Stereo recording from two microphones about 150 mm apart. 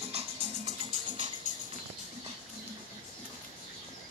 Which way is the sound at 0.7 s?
35° right (ahead or behind).